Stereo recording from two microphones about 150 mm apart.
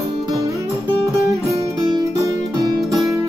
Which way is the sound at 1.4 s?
20° right (ahead or behind).